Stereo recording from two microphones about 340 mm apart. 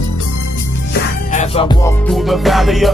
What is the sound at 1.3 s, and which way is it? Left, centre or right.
Music, centre.